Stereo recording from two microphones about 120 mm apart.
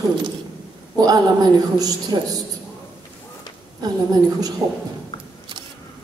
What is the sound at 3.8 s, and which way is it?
Speech, 35° right (ahead or behind).